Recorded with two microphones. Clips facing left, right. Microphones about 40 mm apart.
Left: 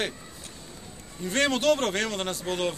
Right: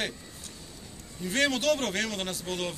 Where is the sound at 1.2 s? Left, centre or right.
Centre.